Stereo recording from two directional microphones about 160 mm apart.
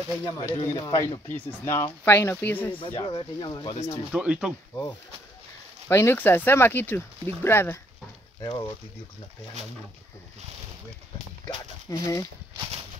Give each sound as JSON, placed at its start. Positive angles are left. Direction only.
{"t": 0.2, "sound": "speech", "side_deg": 25}
{"t": 1.3, "sound": "speech", "side_deg": 15}
{"t": 2.8, "sound": "speech", "side_deg": 30}
{"t": 4.1, "sound": "speech", "side_deg": -5}
{"t": 5.9, "sound": "speech", "side_deg": 15}
{"t": 8.5, "sound": "speech", "side_deg": 35}
{"t": 11.4, "sound": "speech", "side_deg": 20}